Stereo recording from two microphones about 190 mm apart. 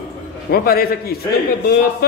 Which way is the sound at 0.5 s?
50° left (ahead or behind).